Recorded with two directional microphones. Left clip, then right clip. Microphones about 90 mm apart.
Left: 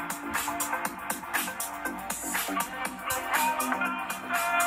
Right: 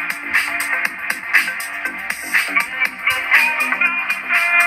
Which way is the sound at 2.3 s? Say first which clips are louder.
Right 14 dB; 20° right (ahead or behind).